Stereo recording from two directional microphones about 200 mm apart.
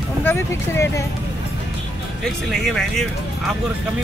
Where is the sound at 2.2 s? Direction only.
Centre (ahead or behind).